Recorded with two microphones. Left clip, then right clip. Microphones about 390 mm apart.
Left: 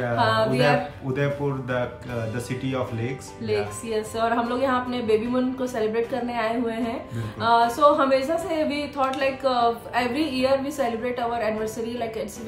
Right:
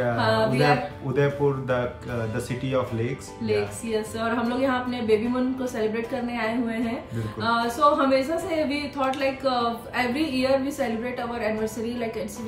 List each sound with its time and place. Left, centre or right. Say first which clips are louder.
0.0 s speech: left 1 dB; centre